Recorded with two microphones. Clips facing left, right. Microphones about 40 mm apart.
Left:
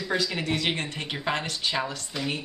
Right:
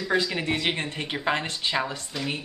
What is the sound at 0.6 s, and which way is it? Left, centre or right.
Speech, centre.